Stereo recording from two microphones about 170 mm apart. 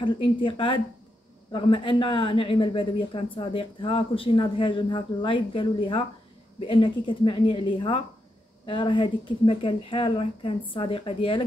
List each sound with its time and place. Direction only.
0.0 s a woman's voice: 30° left (ahead or behind)